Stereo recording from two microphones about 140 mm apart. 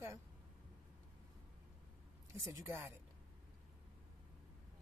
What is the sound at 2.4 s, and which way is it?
Speech, 20° right (ahead or behind).